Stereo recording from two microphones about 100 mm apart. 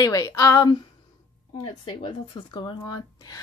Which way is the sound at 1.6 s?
55° left (ahead or behind).